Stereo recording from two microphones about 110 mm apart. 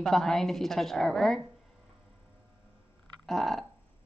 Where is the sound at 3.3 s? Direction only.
Centre (ahead or behind).